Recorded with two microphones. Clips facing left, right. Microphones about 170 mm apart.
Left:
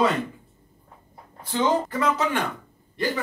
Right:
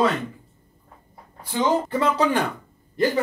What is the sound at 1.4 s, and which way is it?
Speech, 10° right (ahead or behind).